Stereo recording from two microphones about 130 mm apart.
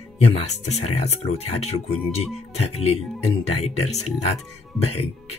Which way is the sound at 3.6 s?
55° left (ahead or behind).